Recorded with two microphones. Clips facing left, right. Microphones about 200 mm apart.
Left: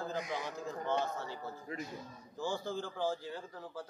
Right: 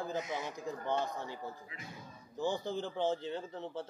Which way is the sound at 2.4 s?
20° right (ahead or behind).